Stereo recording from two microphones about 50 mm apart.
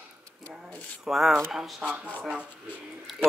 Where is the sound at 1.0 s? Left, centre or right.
Centre.